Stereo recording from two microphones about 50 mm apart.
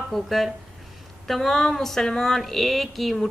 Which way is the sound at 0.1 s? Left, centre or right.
Centre.